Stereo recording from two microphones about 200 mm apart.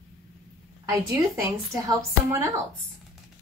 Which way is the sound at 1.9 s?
15° right (ahead or behind).